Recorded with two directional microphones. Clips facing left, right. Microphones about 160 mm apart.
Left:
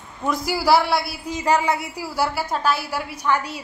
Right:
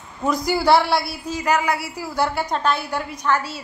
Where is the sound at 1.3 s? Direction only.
25° left (ahead or behind).